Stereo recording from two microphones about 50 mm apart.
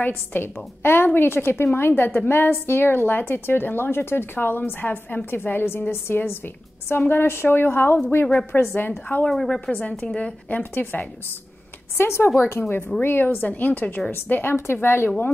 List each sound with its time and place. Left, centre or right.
0.0 s a woman's voice: left
9.7 s a woman's voice: left
10.6 s a woman's voice: left
12.0 s a woman's voice: left
14.1 s a woman's voice: left